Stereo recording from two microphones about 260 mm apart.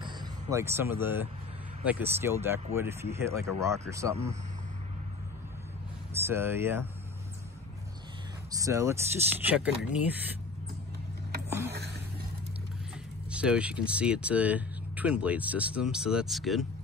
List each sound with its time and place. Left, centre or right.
0.0 s vehicle: centre
2.1 s speech: centre
6.1 s speech: centre
8.5 s speech: centre
11.7 s a sound: right
13.3 s speech: centre